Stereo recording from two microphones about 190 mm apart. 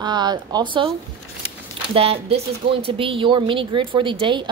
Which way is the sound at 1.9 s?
30° right (ahead or behind).